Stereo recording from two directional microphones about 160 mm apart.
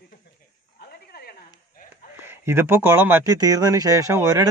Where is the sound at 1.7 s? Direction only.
60° left (ahead or behind).